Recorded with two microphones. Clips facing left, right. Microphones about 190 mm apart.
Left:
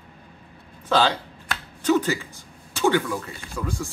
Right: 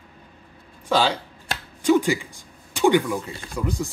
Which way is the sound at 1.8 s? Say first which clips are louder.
Right 2 dB; 10° right (ahead or behind).